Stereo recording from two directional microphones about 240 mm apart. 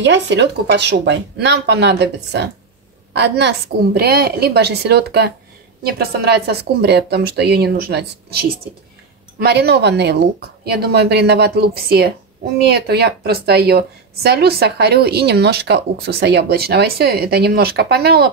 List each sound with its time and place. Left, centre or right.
0.0 s a woman's voice: right